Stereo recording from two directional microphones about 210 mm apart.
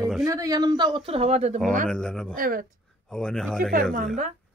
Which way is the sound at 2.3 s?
40° right (ahead or behind).